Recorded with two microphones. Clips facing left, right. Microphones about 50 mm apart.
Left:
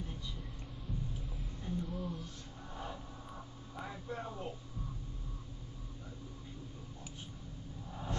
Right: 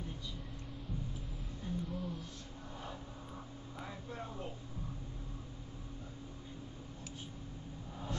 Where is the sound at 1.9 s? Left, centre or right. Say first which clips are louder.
Left 1 dB; centre.